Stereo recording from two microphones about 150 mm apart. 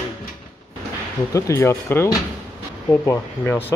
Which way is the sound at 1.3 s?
20° left (ahead or behind).